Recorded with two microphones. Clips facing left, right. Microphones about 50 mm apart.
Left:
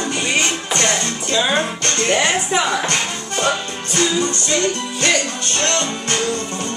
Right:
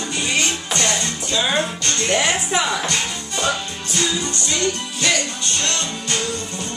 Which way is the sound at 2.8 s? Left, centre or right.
Left.